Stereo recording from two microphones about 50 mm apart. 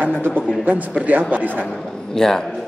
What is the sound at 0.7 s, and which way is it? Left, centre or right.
A man's voice, right.